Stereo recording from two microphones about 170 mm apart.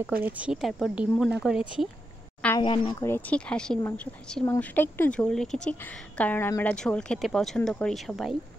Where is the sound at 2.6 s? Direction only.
25° left (ahead or behind).